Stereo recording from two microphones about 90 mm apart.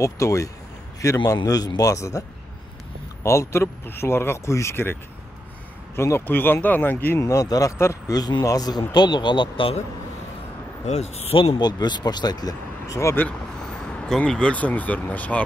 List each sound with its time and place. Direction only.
0.0 s speech: 35° left (ahead or behind)
3.3 s speech: 30° left (ahead or behind)
5.9 s speech: 25° left (ahead or behind)
7.2 s speech: 35° left (ahead or behind)
8.1 s speech: 50° left (ahead or behind); by 9.8 s 70° left (ahead or behind)
11.3 s speech: 75° left (ahead or behind)
11.6 s speech: 50° left (ahead or behind)
13.6 s speech: 5° left (ahead or behind)